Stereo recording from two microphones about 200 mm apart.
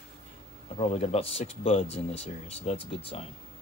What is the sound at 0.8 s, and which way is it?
Speech, 30° left (ahead or behind).